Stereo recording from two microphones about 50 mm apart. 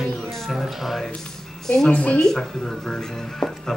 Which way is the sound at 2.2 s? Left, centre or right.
Centre.